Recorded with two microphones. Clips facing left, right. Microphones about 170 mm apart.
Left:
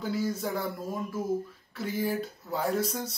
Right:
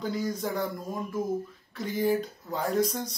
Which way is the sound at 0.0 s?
5° left (ahead or behind).